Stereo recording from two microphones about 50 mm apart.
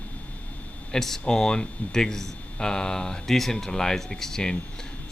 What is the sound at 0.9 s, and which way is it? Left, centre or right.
Speech, centre.